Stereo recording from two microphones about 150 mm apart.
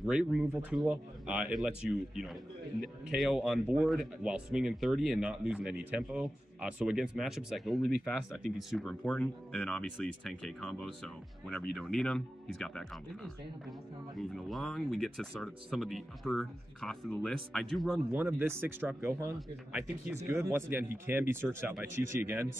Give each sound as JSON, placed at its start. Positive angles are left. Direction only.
{"t": 0.1, "sound": "a man's voice", "side_deg": -5}
{"t": 18.1, "sound": "speech", "side_deg": -15}